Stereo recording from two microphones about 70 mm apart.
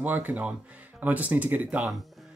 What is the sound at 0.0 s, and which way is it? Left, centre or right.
Speech, right.